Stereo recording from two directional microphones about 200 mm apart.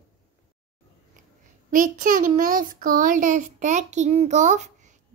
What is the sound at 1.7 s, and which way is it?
A child's voice, 45° right (ahead or behind).